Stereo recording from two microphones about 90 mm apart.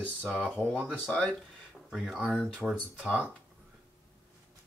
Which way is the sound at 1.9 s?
5° right (ahead or behind).